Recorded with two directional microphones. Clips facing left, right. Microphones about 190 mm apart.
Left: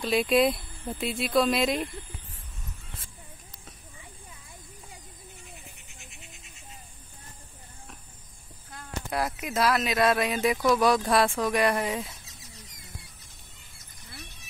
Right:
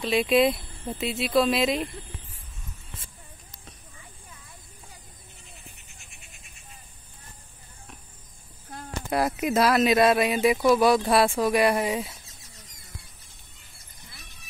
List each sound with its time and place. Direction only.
0.0 s speech: centre (ahead or behind)
5.9 s goat: 20° left (ahead or behind)
9.1 s speech: 25° right (ahead or behind); by 12.1 s 10° right (ahead or behind)